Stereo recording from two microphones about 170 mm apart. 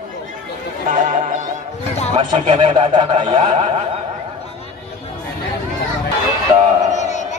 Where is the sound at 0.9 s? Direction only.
50° right (ahead or behind).